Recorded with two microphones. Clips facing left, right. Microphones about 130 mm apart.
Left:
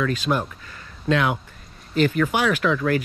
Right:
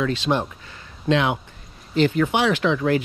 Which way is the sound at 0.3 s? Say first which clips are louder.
Right 2 dB; 45° right (ahead or behind).